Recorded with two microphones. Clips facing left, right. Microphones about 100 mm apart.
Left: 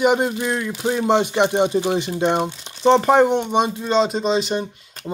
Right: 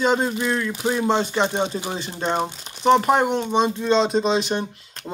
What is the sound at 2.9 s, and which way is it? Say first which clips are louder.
Speech: left 3 dB; 25° left (ahead or behind).